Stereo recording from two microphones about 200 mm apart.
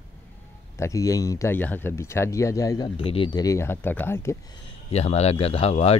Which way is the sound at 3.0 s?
25° left (ahead or behind).